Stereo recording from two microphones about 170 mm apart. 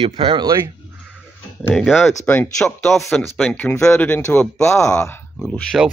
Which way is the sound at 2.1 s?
15° left (ahead or behind).